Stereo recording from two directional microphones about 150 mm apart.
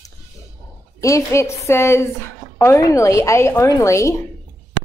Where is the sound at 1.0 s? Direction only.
20° left (ahead or behind).